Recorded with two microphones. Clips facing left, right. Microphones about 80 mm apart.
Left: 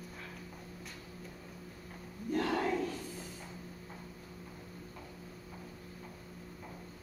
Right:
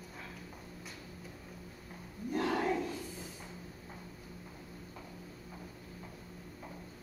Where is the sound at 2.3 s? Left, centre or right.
Centre.